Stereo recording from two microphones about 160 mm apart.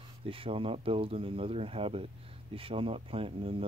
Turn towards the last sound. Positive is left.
turn(degrees=-35)  # may be behind; listen again after turning